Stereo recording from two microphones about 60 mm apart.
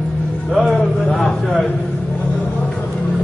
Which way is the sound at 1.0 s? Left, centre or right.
Centre.